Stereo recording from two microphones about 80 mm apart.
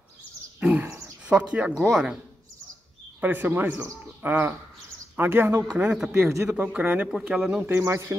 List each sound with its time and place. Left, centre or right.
0.6 s a sound: centre
1.3 s speech: centre
1.8 s speech: centre
3.2 s speech: right
5.7 s speech: centre
6.7 s speech: centre
7.1 s speech: centre
7.6 s a man's voice: right